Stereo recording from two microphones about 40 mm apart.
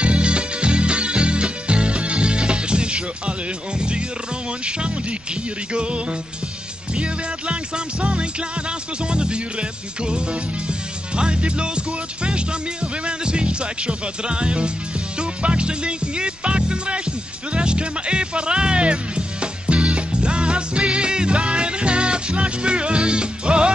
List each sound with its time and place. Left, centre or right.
0.0 s music: right